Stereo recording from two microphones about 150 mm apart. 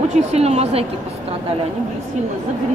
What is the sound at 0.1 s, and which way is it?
Speech, 50° right (ahead or behind).